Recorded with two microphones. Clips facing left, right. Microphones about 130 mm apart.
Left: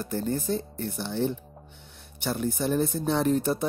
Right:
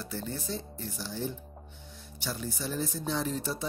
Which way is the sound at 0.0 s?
50° left (ahead or behind).